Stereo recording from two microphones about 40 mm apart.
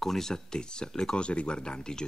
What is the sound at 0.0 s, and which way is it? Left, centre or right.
Speech, centre.